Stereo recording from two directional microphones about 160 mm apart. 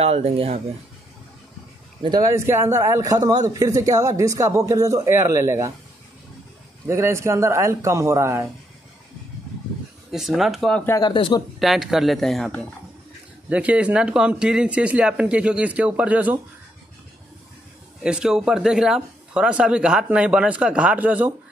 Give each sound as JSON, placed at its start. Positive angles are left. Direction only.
{"t": 0.0, "sound": "speech", "side_deg": -40}
{"t": 2.0, "sound": "a man's voice", "side_deg": -25}
{"t": 6.9, "sound": "a man's voice", "side_deg": -15}
{"t": 10.1, "sound": "speech", "side_deg": 0}
{"t": 10.9, "sound": "speech", "side_deg": 25}
{"t": 11.6, "sound": "speech", "side_deg": 0}
{"t": 13.5, "sound": "a man's voice", "side_deg": -10}
{"t": 18.0, "sound": "speech", "side_deg": -5}